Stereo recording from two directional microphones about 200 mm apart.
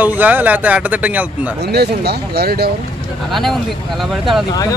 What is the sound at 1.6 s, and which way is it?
Speech, 55° right (ahead or behind).